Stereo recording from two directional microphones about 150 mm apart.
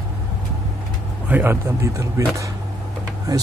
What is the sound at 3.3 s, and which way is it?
Speech, 25° right (ahead or behind).